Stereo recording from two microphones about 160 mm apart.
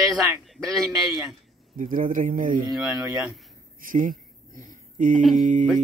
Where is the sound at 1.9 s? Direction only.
55° right (ahead or behind).